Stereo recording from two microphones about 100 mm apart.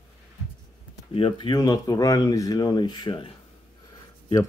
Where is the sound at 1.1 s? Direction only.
65° left (ahead or behind).